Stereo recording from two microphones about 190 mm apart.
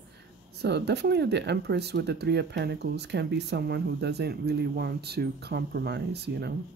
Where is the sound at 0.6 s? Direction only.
60° right (ahead or behind).